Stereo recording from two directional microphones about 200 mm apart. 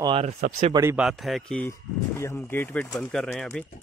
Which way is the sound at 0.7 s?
10° right (ahead or behind).